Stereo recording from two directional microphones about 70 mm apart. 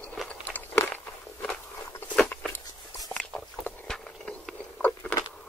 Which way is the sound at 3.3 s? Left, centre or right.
Centre.